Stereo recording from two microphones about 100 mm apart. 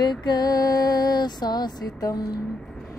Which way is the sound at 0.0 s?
45° left (ahead or behind).